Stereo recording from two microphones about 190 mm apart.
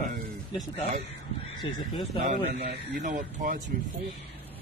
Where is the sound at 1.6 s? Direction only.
25° left (ahead or behind).